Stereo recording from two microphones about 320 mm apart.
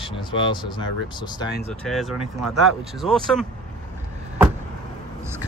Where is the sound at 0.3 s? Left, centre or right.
Centre.